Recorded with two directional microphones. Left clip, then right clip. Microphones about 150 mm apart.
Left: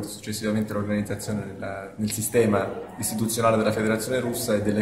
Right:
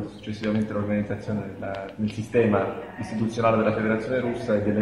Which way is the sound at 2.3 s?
15° left (ahead or behind).